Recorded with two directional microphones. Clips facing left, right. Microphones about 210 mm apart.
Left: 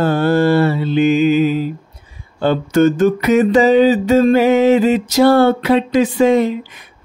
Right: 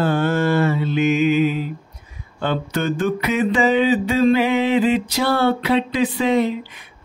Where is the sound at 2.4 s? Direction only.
40° left (ahead or behind).